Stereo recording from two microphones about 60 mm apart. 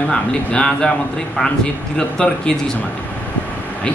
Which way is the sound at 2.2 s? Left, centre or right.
Centre.